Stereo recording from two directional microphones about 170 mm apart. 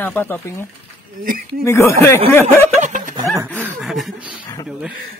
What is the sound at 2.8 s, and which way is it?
Music, 45° right (ahead or behind).